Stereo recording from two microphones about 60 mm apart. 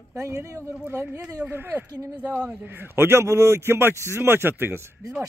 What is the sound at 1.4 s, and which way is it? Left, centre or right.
A man's voice, right.